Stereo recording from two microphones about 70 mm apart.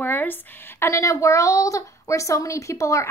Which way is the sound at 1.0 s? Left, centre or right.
Left.